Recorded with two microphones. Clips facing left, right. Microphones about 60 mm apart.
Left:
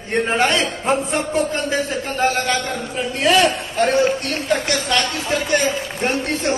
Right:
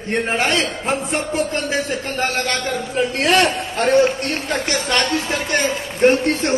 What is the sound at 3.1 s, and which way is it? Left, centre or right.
Speech, right.